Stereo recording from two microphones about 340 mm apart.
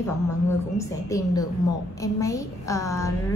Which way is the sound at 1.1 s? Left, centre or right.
Centre.